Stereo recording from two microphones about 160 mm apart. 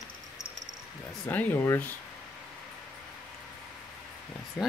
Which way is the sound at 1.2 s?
10° left (ahead or behind).